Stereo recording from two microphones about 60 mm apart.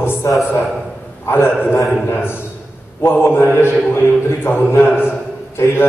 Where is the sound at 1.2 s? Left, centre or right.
Left.